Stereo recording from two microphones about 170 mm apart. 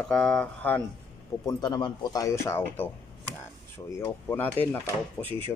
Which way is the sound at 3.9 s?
15° left (ahead or behind).